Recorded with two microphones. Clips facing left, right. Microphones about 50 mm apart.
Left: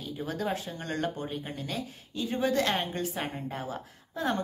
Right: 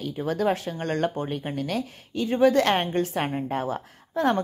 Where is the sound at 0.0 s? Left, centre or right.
Right.